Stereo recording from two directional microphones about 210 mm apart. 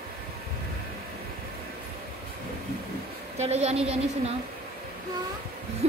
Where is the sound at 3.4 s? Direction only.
30° right (ahead or behind).